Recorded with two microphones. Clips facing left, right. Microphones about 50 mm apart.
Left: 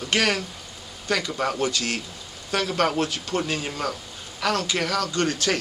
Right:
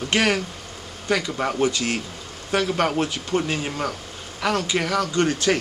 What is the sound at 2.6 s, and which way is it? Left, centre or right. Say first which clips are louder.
Speech: even; centre.